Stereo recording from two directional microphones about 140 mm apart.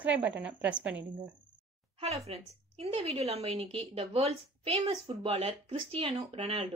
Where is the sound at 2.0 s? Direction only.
45° right (ahead or behind).